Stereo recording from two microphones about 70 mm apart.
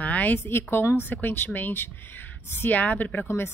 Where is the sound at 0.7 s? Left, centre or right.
Left.